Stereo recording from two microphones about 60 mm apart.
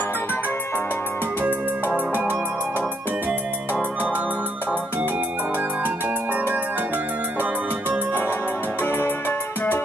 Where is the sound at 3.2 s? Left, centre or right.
Right.